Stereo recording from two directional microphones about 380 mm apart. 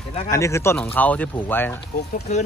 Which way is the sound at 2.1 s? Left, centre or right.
Centre.